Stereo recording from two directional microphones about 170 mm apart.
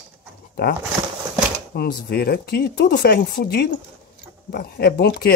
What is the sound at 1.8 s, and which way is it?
Speech, 70° left (ahead or behind).